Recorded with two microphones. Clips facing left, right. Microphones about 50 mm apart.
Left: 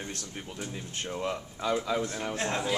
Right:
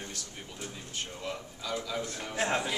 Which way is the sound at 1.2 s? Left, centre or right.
Left.